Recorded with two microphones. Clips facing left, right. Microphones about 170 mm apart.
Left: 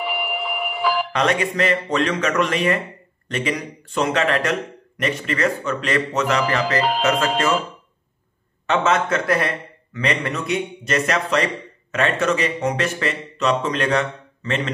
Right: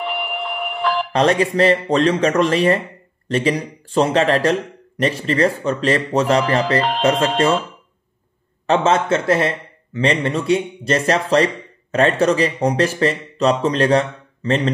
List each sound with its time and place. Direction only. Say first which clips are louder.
0.0 s a sound: right 1 dB; 5° left (ahead or behind)
1.1 s a man's voice: right 5 dB; 35° right (ahead or behind)
8.6 s a man's voice: right 3 dB; 30° right (ahead or behind)